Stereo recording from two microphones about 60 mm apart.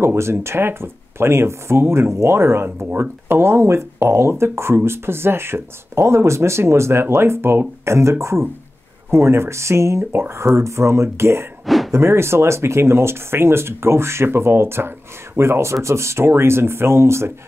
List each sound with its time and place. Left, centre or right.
0.0 s speech: right
11.6 s a sound: centre
11.9 s speech: right